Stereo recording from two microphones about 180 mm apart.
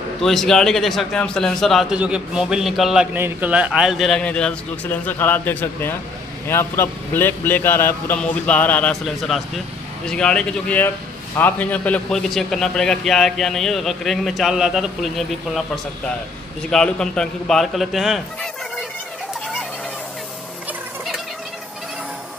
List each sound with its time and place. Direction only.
0.2 s a man's voice: centre (ahead or behind)